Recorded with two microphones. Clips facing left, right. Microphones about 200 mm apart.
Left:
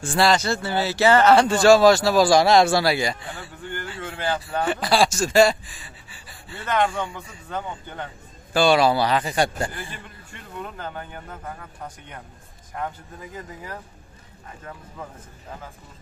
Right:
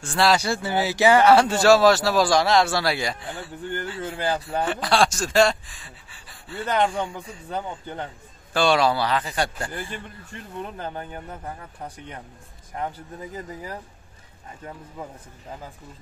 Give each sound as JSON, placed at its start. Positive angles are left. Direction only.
{"t": 0.0, "sound": "speech", "side_deg": 5}
{"t": 0.3, "sound": "speech", "side_deg": -10}
{"t": 2.3, "sound": "speech", "side_deg": 15}
{"t": 2.9, "sound": "speech", "side_deg": 0}
{"t": 4.0, "sound": "speech", "side_deg": -30}
{"t": 4.6, "sound": "speech", "side_deg": 0}
{"t": 8.5, "sound": "speech", "side_deg": 5}
{"t": 8.9, "sound": "speech", "side_deg": 15}
{"t": 10.6, "sound": "speech", "side_deg": -25}